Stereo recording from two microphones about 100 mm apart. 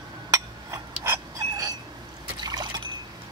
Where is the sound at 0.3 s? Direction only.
30° right (ahead or behind).